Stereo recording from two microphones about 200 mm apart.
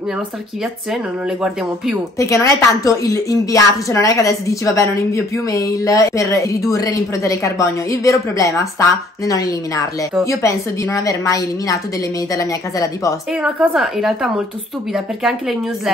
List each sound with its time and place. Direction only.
2.1 s a woman's voice: 15° left (ahead or behind)
13.3 s a woman's voice: 5° right (ahead or behind)